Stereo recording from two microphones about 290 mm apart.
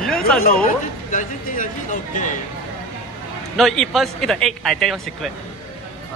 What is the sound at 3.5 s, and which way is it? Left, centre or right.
Speech, centre.